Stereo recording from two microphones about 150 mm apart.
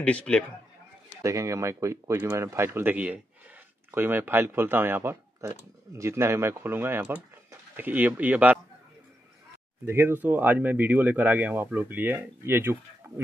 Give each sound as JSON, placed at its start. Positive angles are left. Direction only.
{"t": 0.0, "sound": "a man's voice", "side_deg": 10}
{"t": 1.2, "sound": "speech", "side_deg": -20}
{"t": 9.8, "sound": "speech", "side_deg": -15}